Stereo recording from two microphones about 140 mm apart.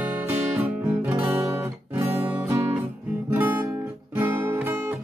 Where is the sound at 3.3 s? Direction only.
15° right (ahead or behind).